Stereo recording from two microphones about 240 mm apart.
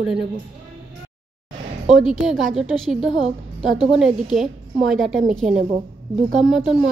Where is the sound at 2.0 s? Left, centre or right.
Centre.